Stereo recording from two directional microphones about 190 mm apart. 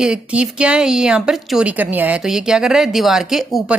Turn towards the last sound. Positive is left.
turn(degrees=0)  # may be behind; listen again after turning